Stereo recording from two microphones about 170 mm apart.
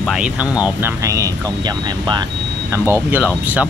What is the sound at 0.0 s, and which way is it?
Speech, 5° right (ahead or behind).